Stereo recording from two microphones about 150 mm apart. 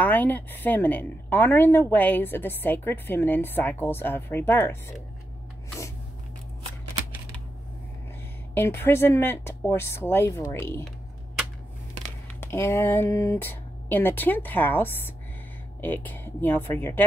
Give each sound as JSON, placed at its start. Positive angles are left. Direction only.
{"t": 0.0, "sound": "a woman's voice", "side_deg": 10}
{"t": 8.5, "sound": "a woman's voice", "side_deg": 15}
{"t": 12.4, "sound": "a woman's voice", "side_deg": 15}